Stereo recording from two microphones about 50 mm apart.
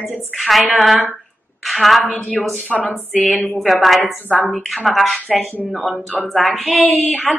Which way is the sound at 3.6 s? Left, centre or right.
Centre.